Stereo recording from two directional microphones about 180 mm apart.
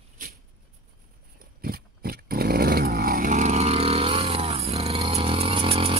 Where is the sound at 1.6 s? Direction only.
55° right (ahead or behind).